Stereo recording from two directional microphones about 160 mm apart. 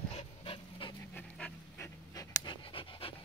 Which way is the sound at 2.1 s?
25° left (ahead or behind).